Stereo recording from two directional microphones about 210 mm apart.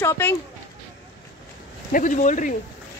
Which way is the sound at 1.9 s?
35° left (ahead or behind).